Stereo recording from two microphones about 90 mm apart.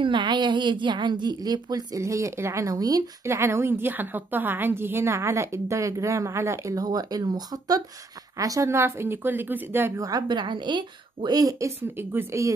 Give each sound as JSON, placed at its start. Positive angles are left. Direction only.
{"t": 0.0, "sound": "a woman's voice", "side_deg": -60}
{"t": 3.3, "sound": "a woman's voice", "side_deg": -30}
{"t": 9.9, "sound": "a woman's voice", "side_deg": -40}
{"t": 10.2, "sound": "speech", "side_deg": -60}
{"t": 12.0, "sound": "speech", "side_deg": -25}